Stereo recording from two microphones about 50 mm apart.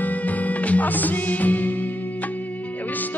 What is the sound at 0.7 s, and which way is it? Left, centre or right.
Music, left.